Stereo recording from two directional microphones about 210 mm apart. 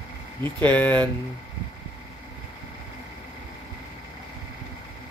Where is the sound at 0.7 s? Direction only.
5° left (ahead or behind).